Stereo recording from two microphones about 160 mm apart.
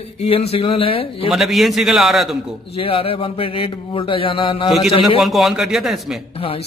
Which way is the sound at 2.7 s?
35° left (ahead or behind).